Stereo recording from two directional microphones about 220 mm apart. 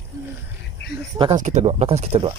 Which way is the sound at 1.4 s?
30° right (ahead or behind).